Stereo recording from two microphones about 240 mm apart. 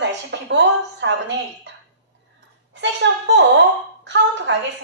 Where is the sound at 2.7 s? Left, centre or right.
Right.